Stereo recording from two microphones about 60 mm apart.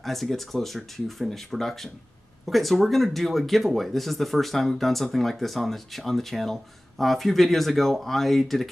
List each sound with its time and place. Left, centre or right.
0.0 s speech: centre